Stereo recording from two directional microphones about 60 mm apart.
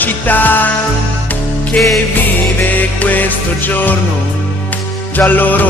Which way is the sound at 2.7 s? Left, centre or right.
Left.